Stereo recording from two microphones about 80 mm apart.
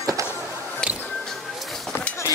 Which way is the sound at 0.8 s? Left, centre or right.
Centre.